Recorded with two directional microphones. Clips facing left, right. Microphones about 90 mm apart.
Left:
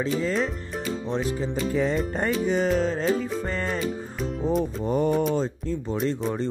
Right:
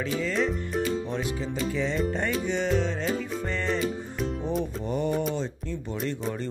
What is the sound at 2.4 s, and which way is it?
Speech, 40° left (ahead or behind).